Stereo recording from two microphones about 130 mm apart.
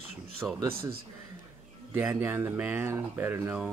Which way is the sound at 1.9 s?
15° right (ahead or behind).